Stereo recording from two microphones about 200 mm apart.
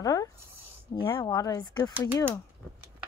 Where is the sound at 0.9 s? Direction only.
25° left (ahead or behind).